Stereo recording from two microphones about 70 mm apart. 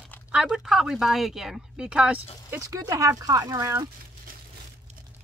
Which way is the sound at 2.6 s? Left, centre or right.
Right.